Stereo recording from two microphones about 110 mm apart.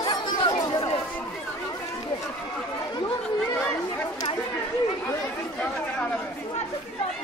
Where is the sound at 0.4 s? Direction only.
40° left (ahead or behind).